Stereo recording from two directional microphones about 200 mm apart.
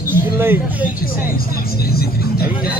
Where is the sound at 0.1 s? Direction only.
10° right (ahead or behind).